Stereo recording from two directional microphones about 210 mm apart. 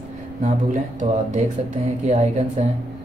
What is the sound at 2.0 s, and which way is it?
Speech, 30° right (ahead or behind).